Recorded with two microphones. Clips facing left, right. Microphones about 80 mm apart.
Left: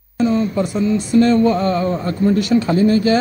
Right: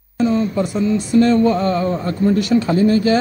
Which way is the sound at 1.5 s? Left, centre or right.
Centre.